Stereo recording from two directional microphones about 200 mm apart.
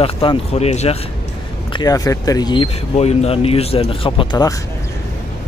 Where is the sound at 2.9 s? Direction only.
30° left (ahead or behind).